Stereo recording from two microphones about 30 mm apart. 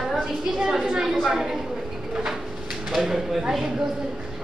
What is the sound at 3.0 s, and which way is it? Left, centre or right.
Speech, centre.